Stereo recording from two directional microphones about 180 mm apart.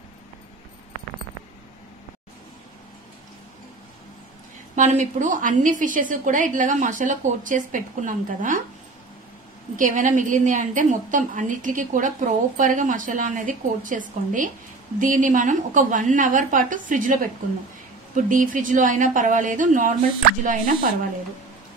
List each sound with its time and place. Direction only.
4.7 s a woman's voice: 45° right (ahead or behind)
9.8 s a woman's voice: 45° right (ahead or behind)